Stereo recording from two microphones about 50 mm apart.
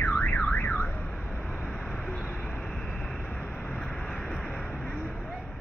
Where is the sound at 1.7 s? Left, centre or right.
Centre.